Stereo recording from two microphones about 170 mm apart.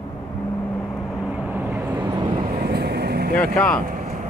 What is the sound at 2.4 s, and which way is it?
Vehicle, 65° right (ahead or behind).